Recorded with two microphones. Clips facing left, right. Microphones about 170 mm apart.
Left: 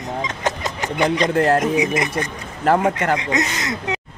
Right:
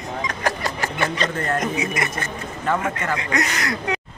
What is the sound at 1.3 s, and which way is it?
Speech, 75° left (ahead or behind).